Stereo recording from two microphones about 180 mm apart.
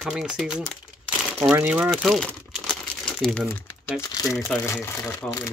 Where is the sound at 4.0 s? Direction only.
20° left (ahead or behind).